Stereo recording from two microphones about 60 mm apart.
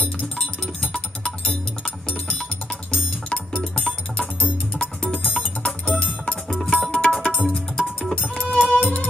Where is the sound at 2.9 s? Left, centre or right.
Centre.